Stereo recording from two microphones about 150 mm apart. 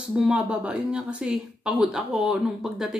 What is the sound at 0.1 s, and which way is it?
Speech, 5° right (ahead or behind).